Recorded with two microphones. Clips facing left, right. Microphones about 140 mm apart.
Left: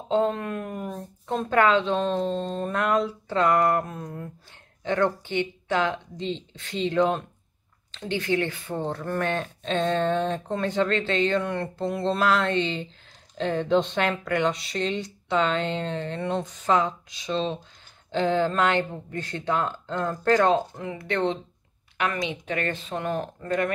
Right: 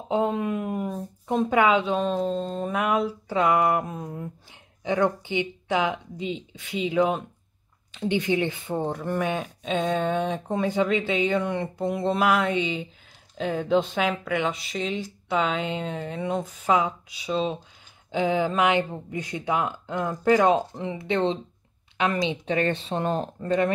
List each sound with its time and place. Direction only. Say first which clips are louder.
0.1 s speech: even; 10° right (ahead or behind)
20.7 s speech: right 2 dB; 25° right (ahead or behind)